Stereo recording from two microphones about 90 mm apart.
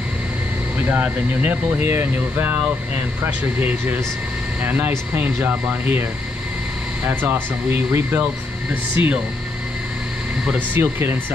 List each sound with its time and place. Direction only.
0.7 s speech: 20° right (ahead or behind)
7.1 s speech: 25° right (ahead or behind)
10.4 s speech: 15° right (ahead or behind)